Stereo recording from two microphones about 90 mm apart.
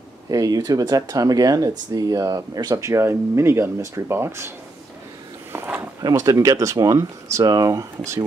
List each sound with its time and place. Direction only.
0.3 s speech: 40° right (ahead or behind)
6.0 s speech: 40° right (ahead or behind)